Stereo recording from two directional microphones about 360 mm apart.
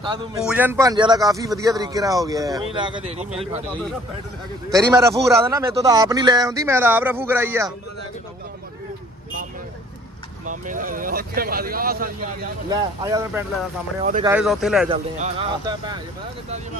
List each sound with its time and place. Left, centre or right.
0.0 s a man's voice: centre
4.7 s a man's voice: centre
10.4 s speech: right
12.6 s a man's voice: centre
14.9 s a man's voice: centre